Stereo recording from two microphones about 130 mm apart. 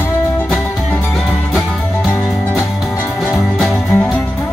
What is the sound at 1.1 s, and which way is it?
Music, centre (ahead or behind).